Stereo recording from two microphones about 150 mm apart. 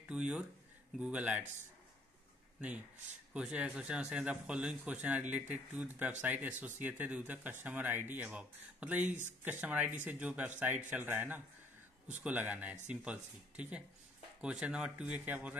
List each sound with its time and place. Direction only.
0.1 s speech: 5° right (ahead or behind)
3.3 s speech: 10° right (ahead or behind)